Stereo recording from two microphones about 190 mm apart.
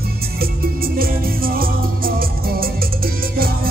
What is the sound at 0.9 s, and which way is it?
Music, 50° right (ahead or behind).